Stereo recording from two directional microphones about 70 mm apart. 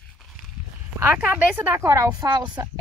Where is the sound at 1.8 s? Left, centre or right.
Right.